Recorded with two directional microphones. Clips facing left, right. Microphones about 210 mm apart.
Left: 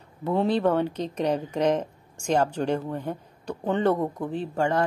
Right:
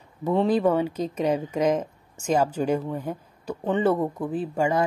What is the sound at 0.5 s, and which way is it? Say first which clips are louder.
A woman's voice: even; 10° right (ahead or behind).